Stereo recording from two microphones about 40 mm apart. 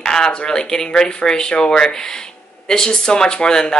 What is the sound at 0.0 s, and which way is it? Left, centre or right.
A woman's voice, centre.